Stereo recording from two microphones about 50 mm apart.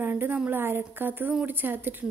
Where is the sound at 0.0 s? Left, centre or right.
Right.